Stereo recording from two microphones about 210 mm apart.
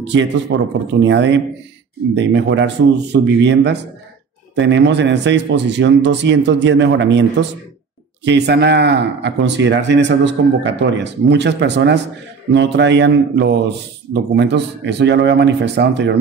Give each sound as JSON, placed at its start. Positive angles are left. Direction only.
{"t": 0.0, "sound": "a man's voice", "side_deg": -60}